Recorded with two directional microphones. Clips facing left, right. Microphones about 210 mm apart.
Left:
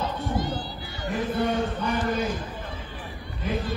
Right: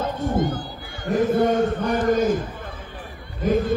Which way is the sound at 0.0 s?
50° right (ahead or behind).